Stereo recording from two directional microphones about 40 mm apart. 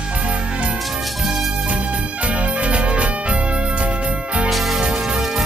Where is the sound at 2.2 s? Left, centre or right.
Right.